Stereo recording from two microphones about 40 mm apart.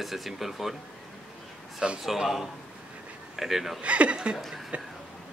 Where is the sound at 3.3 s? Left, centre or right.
Centre.